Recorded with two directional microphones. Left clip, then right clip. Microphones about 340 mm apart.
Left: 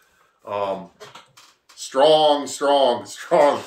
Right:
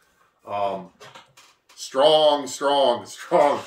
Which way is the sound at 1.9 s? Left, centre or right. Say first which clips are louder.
Left 2 dB; centre.